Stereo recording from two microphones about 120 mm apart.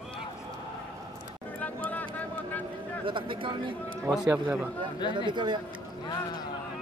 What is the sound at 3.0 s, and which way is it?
Speech, 45° right (ahead or behind).